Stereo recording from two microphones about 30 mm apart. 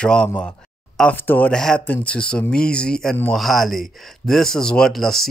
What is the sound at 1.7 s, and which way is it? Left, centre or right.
Speech, left.